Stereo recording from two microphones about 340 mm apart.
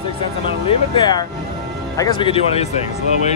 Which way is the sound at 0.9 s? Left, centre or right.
Centre.